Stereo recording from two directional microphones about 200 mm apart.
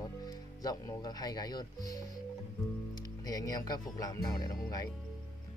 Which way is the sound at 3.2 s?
20° left (ahead or behind).